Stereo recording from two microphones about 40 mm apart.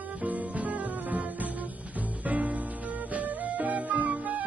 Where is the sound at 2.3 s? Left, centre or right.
Right.